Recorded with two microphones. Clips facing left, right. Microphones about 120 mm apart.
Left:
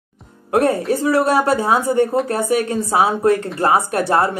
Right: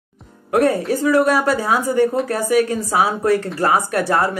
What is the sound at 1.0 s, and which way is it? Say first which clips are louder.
Speech: right 1 dB; 30° left (ahead or behind).